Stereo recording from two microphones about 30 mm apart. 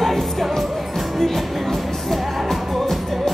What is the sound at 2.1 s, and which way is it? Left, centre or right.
Music, centre.